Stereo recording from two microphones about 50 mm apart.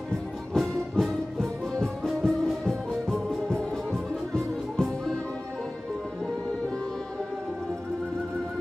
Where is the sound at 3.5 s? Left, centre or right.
Centre.